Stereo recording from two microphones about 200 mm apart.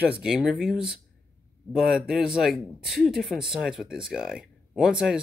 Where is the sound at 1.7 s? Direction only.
5° right (ahead or behind).